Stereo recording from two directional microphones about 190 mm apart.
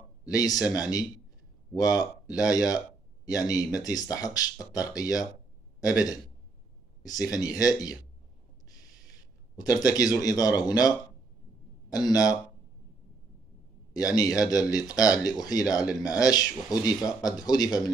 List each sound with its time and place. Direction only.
0.2 s a man's voice: 20° left (ahead or behind)
9.6 s speech: 20° left (ahead or behind)
11.9 s speech: 20° left (ahead or behind)
13.9 s speech: 20° left (ahead or behind)